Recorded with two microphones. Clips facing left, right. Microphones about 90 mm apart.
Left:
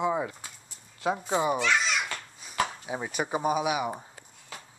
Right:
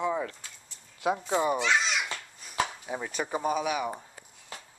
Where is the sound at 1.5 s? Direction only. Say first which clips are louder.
Even; 15° right (ahead or behind).